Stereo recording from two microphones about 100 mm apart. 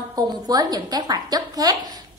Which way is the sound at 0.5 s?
40° right (ahead or behind).